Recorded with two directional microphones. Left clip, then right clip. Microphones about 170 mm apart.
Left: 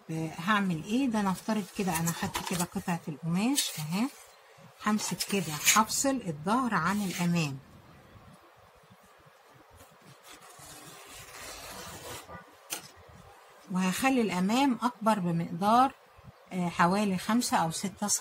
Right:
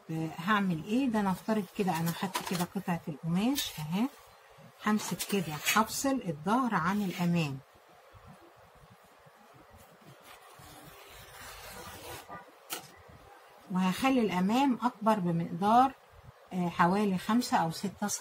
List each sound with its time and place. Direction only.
0.1 s speech: 15° left (ahead or behind)
13.7 s speech: 20° left (ahead or behind)